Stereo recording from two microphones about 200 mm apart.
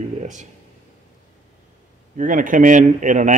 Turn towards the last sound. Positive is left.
turn(degrees=-40)  # may be behind; listen again after turning